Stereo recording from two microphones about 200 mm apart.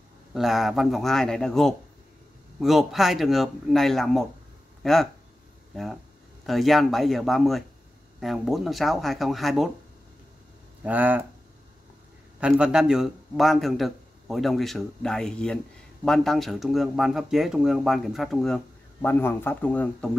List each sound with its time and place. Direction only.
0.3 s speech: centre (ahead or behind)
6.4 s speech: centre (ahead or behind)
10.8 s speech: 10° right (ahead or behind)
12.4 s speech: 5° right (ahead or behind)